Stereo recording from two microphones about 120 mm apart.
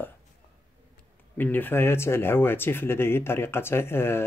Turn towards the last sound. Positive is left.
turn(degrees=20)  # may be behind; listen again after turning